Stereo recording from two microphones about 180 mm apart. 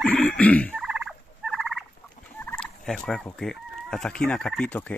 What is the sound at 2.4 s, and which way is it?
Fowl, 5° left (ahead or behind).